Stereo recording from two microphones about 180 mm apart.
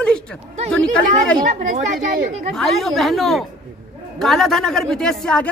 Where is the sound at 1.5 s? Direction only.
40° right (ahead or behind).